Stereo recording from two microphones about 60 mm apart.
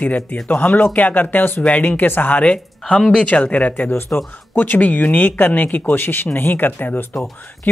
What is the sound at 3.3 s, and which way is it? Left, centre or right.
Speech, left.